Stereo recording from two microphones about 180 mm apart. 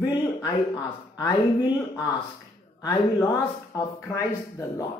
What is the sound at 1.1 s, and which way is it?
Speech, 20° left (ahead or behind).